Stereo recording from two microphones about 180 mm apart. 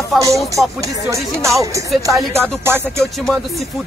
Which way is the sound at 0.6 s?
15° right (ahead or behind).